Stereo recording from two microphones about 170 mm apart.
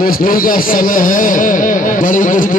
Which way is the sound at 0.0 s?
55° left (ahead or behind).